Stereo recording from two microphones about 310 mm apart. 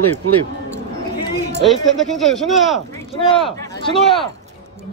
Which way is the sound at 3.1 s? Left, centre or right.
Centre.